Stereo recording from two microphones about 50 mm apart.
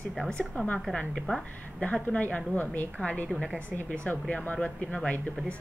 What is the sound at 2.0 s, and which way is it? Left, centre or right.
Speech, left.